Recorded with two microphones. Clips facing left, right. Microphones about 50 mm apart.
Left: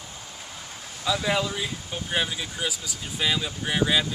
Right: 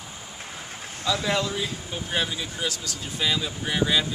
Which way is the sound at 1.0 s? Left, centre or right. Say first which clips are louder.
Even; centre.